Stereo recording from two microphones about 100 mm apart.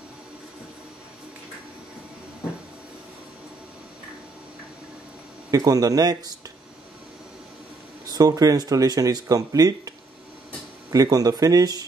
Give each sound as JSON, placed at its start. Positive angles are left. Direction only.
{"t": 5.5, "sound": "speech", "side_deg": -35}
{"t": 8.1, "sound": "speech", "side_deg": -35}